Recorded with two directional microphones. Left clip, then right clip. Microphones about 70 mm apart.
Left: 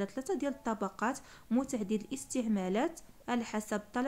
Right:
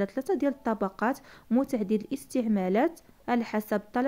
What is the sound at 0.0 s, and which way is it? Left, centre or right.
A woman's voice, right.